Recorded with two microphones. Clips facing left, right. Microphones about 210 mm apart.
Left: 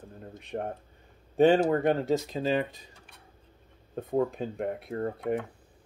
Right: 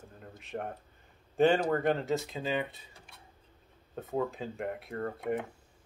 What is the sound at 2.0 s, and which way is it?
Speech, 40° left (ahead or behind).